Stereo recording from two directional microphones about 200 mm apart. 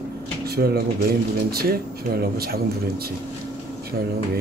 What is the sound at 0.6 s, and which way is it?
Speech, 55° right (ahead or behind).